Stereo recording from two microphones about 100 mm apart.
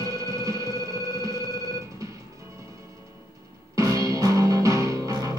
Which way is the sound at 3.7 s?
35° right (ahead or behind).